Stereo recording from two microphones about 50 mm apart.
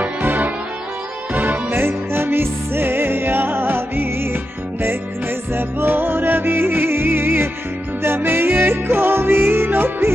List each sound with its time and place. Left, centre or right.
0.0 s music: right
5.5 s music: right